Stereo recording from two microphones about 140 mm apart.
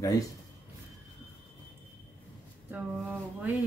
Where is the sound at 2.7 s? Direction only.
15° right (ahead or behind).